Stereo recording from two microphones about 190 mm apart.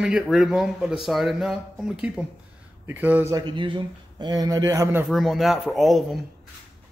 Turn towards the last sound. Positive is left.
turn(degrees=0)  # may be behind; listen again after turning